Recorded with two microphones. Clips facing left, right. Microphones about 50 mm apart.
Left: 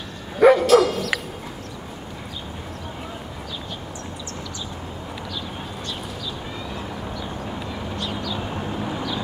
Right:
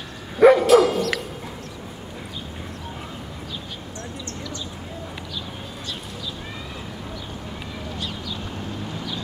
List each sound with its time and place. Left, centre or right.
0.4 s dog: centre
8.4 s vehicle: left